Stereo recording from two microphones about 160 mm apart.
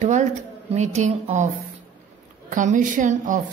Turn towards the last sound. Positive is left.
turn(degrees=-55)  # may be behind; listen again after turning